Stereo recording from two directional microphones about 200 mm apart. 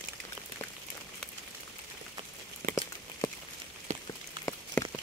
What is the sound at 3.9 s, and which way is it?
Rain on surface, 35° right (ahead or behind).